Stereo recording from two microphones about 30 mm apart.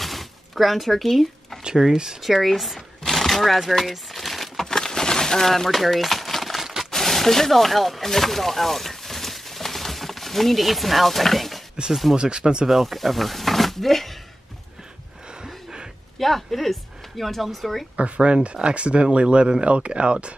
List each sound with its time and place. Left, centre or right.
0.0 s sewing machine: centre
1.6 s speech: right
2.2 s speech: centre
3.0 s a sound: centre
4.6 s a sound: centre
5.7 s a sound: centre
6.9 s a sound: centre
11.9 s speech: centre
12.2 s speech: right
12.8 s speech: centre
16.2 s speech: centre
17.9 s speech: right
19.6 s speech: right